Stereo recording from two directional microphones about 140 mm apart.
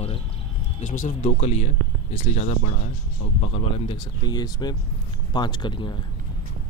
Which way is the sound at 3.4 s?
40° left (ahead or behind).